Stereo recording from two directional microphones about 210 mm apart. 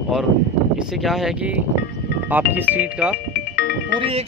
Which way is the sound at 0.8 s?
Centre (ahead or behind).